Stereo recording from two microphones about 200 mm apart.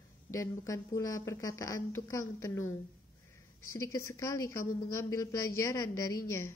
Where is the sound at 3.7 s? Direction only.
15° left (ahead or behind).